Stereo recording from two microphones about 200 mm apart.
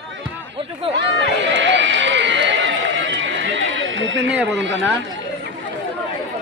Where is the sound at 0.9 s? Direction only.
30° right (ahead or behind).